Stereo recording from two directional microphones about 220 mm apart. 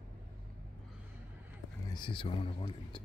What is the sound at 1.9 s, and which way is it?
Speech, 20° left (ahead or behind).